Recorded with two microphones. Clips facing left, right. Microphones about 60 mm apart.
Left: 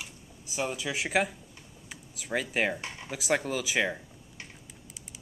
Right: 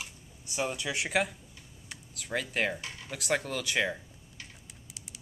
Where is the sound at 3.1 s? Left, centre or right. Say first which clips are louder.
Left 2 dB; centre.